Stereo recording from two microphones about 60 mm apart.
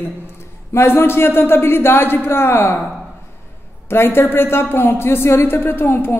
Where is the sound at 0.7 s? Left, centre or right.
Left.